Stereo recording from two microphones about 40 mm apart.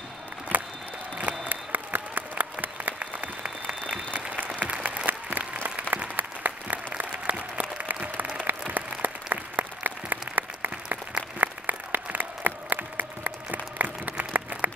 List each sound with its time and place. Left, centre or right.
0.5 s a sound: right
1.5 s applause: right
5.6 s applause: right